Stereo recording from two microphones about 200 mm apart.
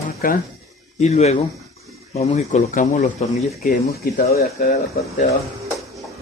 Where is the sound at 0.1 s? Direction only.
50° left (ahead or behind).